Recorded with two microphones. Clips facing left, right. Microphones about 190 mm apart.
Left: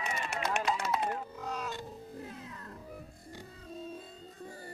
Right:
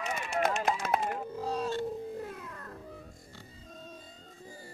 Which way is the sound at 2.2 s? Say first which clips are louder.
Right 3 dB; 55° right (ahead or behind).